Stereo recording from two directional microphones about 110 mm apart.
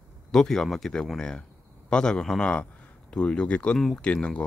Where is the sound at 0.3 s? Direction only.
5° left (ahead or behind).